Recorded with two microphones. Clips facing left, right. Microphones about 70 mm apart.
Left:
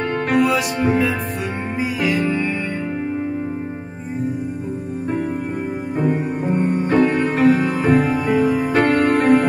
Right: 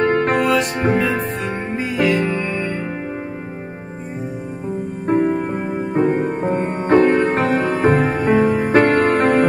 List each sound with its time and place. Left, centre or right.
0.0 s music: right
2.0 s music: right
5.0 s music: right